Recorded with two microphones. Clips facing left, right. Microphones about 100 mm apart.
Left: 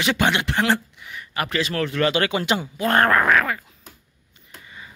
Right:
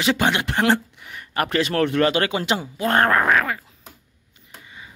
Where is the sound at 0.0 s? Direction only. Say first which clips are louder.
Right 1 dB; 30° right (ahead or behind).